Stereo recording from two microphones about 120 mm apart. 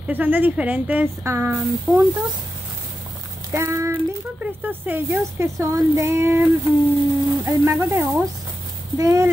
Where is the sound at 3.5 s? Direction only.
25° right (ahead or behind).